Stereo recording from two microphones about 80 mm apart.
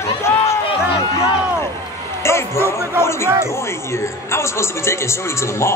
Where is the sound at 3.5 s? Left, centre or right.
Left.